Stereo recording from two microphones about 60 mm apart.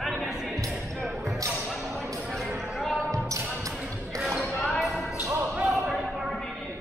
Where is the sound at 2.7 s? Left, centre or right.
Centre.